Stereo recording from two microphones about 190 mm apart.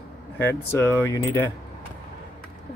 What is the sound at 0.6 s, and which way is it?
Speech, 15° left (ahead or behind).